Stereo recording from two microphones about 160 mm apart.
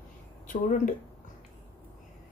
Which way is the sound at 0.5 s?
50° left (ahead or behind).